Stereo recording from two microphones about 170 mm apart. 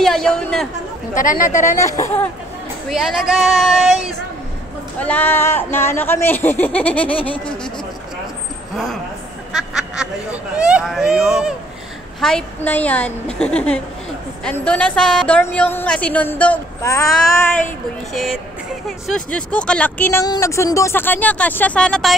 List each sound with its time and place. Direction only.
0.0 s speech: 5° left (ahead or behind)
1.1 s speech: 50° left (ahead or behind)
1.8 s speech: 20° left (ahead or behind)
2.9 s speech: centre (ahead or behind)
4.9 s speech: 10° left (ahead or behind)
9.5 s speech: centre (ahead or behind)
18.9 s speech: centre (ahead or behind)